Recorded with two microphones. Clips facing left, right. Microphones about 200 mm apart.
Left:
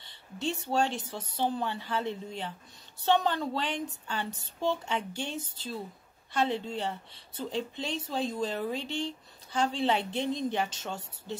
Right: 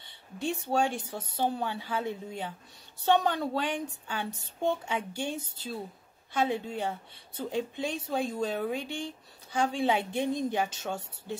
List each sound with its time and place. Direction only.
0.0 s a woman's voice: 10° right (ahead or behind)